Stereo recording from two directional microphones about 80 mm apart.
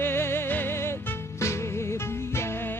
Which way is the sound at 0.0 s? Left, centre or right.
Left.